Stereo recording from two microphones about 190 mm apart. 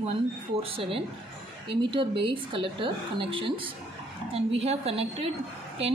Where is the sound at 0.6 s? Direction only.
30° right (ahead or behind).